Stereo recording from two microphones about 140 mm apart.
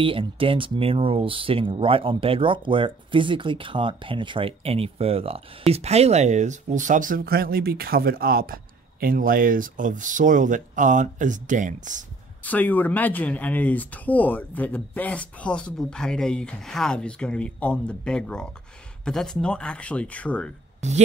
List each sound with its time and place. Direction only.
0.0 s speech: 40° right (ahead or behind); by 12.0 s 65° right (ahead or behind)
12.4 s speech: 10° left (ahead or behind)
20.8 s speech: 55° right (ahead or behind)